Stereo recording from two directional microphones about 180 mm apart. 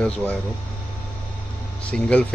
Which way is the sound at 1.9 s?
5° left (ahead or behind).